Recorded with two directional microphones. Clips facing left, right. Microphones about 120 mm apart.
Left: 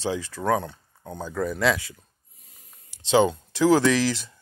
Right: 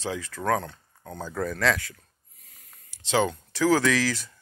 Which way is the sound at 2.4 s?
25° left (ahead or behind).